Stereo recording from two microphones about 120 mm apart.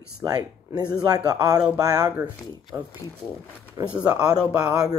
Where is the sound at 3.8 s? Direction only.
30° right (ahead or behind).